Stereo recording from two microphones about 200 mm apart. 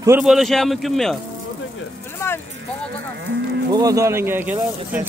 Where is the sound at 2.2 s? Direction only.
10° left (ahead or behind).